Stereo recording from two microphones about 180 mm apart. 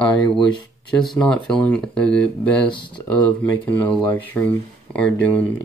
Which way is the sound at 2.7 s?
25° left (ahead or behind).